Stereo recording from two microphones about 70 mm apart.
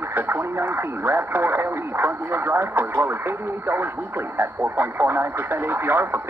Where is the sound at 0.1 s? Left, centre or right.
Right.